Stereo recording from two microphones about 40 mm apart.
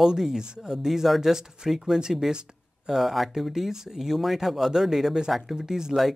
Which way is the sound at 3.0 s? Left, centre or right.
Centre.